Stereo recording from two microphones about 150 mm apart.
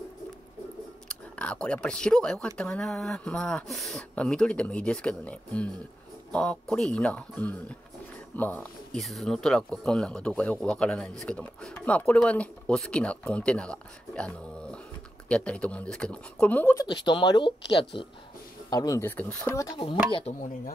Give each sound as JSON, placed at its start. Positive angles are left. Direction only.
{"t": 1.0, "sound": "speech", "side_deg": 5}
{"t": 16.7, "sound": "speech", "side_deg": 30}
{"t": 18.7, "sound": "speech", "side_deg": 20}
{"t": 20.1, "sound": "speech", "side_deg": 40}